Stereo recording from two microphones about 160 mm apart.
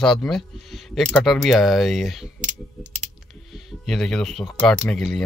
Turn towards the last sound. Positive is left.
turn(degrees=5)  # may be behind; listen again after turning